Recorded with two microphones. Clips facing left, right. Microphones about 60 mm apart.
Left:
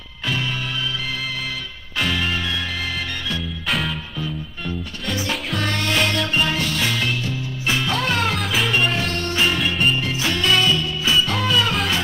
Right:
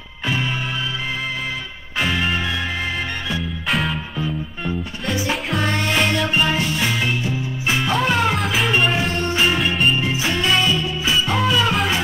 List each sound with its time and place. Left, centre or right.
2.0 s music: centre
3.9 s music: centre
8.4 s music: centre
9.9 s music: centre